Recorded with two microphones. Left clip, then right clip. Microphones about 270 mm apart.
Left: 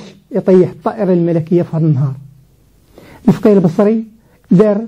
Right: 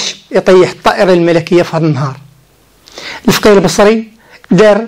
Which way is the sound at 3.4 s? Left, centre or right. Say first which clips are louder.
Right 5 dB; centre.